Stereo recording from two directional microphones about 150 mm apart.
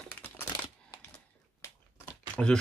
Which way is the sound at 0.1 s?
15° left (ahead or behind).